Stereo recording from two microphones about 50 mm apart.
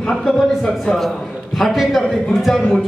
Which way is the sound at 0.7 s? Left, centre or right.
Centre.